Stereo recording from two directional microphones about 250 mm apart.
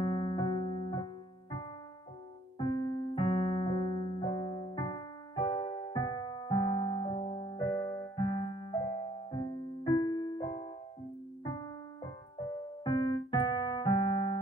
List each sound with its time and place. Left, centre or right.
0.0 s piano: centre
3.2 s piano: left
9.3 s music: centre